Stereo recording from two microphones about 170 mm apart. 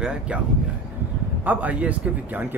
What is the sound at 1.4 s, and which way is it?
Speech, 10° right (ahead or behind).